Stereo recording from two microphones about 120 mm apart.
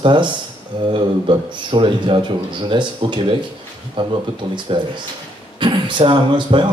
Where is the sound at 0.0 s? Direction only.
45° right (ahead or behind).